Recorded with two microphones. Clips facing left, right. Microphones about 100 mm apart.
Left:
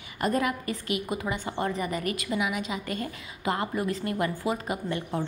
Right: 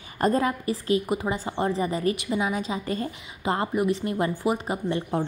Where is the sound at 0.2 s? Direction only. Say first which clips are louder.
Right 4 dB; 30° right (ahead or behind).